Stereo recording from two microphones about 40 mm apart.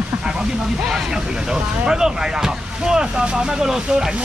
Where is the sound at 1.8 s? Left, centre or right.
Centre.